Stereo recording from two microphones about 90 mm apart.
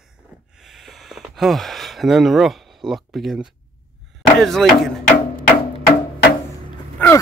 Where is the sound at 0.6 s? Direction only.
5° right (ahead or behind).